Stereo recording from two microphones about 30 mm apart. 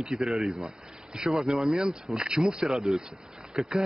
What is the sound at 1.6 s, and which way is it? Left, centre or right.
Speech, right.